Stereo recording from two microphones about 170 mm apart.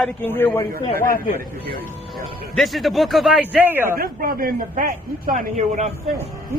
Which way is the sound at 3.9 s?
60° right (ahead or behind).